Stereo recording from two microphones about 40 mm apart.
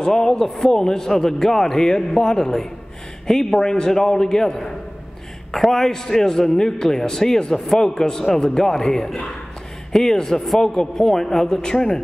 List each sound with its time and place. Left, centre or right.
0.0 s a man's voice: centre